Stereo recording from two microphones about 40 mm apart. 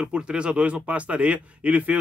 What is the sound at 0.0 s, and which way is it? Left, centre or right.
Speech, right.